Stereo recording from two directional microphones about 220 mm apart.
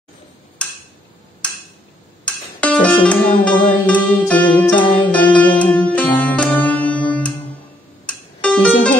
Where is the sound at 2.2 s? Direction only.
5° left (ahead or behind).